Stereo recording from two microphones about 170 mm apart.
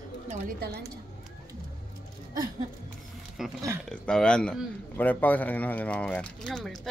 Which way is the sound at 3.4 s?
Centre (ahead or behind).